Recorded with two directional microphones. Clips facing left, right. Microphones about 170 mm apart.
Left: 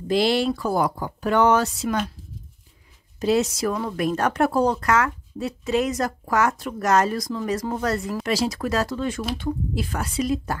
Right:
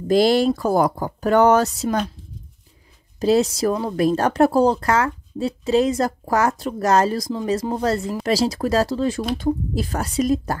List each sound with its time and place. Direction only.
0.1 s a woman's voice: 40° right (ahead or behind)
3.2 s a woman's voice: 35° right (ahead or behind)